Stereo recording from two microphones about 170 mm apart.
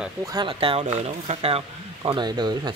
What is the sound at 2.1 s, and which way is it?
Speech, 25° right (ahead or behind).